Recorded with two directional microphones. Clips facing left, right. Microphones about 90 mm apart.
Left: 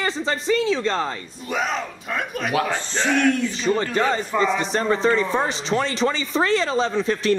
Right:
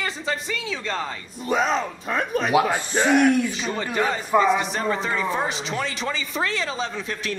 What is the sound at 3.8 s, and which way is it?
Speech, 15° right (ahead or behind).